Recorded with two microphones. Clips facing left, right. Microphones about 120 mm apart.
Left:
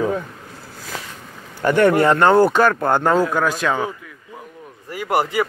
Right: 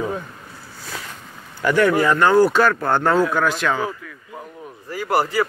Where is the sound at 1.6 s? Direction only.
40° left (ahead or behind).